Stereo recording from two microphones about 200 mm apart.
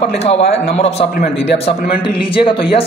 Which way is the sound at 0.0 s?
30° left (ahead or behind).